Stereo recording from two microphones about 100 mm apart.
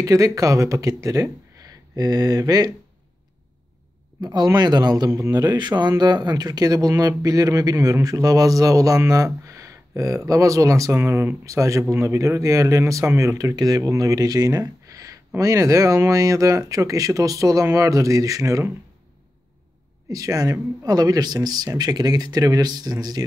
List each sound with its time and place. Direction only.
0.0 s speech: 35° right (ahead or behind)
4.2 s speech: 45° right (ahead or behind)
5.6 s speech: 45° right (ahead or behind)
20.1 s speech: 35° right (ahead or behind)